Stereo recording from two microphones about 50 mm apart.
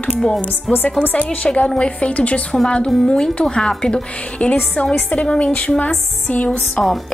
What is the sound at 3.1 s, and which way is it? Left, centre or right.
A woman's voice, centre.